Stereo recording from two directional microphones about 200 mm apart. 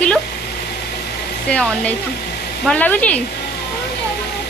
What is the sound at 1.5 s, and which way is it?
Speech, 5° left (ahead or behind).